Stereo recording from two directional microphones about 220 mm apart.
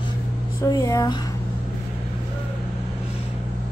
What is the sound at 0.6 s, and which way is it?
Speech, 15° left (ahead or behind).